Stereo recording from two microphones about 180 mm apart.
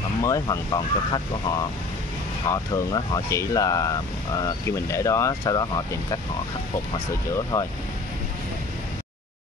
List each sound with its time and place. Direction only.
0.2 s speech: 20° left (ahead or behind)
2.5 s speech: 20° left (ahead or behind)
7.5 s speech: 15° left (ahead or behind)